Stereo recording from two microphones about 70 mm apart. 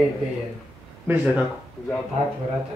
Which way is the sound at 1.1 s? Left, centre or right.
Right.